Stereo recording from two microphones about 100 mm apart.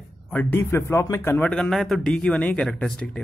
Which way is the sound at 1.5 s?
5° left (ahead or behind).